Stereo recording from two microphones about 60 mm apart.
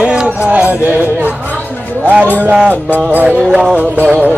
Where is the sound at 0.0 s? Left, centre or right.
Centre.